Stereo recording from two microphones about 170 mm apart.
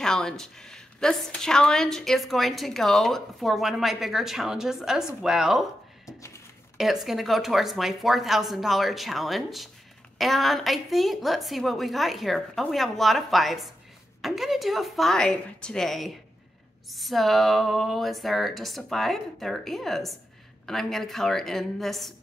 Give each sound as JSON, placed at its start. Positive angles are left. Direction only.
{"t": 0.0, "sound": "a woman's voice", "side_deg": 5}
{"t": 6.0, "sound": "a sound", "side_deg": 15}
{"t": 6.8, "sound": "a woman's voice", "side_deg": 0}